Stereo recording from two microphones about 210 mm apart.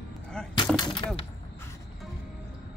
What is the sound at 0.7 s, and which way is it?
Speech, 25° left (ahead or behind).